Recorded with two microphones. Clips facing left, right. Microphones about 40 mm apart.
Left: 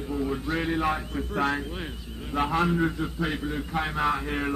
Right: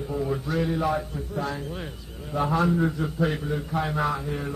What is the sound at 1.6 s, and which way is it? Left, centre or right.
A man's voice, left.